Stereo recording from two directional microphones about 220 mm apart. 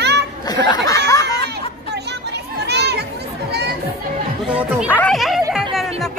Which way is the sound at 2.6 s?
50° right (ahead or behind).